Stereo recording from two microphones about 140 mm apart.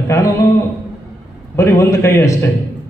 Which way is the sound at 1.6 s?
20° left (ahead or behind).